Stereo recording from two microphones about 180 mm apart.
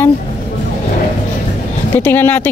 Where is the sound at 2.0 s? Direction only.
10° left (ahead or behind).